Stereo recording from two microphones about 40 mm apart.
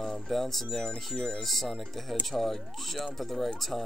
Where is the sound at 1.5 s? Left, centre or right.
Centre.